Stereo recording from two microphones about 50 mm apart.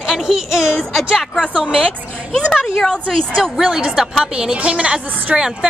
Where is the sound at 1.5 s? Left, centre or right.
Right.